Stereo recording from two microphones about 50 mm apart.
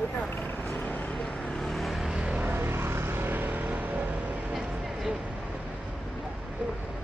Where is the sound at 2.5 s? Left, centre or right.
Right.